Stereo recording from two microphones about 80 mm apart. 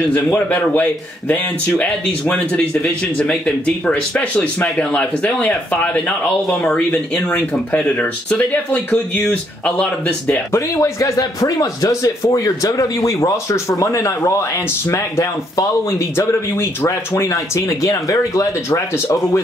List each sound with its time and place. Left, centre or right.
0.1 s speech: left
10.5 s speech: left
18.7 s speech: left